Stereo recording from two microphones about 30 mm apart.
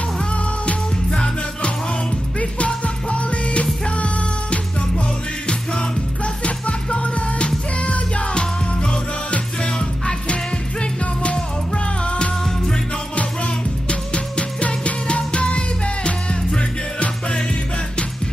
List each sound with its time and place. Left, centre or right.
2.6 s music: left
5.5 s music: left
6.2 s music: left